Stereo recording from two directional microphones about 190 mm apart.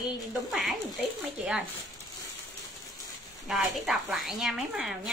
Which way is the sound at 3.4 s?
Centre (ahead or behind).